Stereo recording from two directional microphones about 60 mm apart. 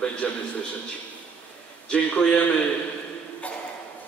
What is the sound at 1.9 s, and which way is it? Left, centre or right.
Speech, centre.